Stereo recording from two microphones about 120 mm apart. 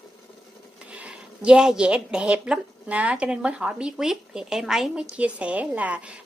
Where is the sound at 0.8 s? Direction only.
10° right (ahead or behind).